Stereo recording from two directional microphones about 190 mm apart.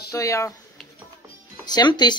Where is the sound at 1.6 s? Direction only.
20° left (ahead or behind).